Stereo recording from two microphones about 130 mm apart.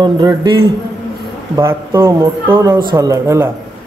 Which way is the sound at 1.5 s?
20° right (ahead or behind).